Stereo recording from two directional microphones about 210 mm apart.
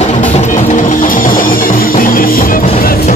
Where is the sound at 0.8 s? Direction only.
40° left (ahead or behind).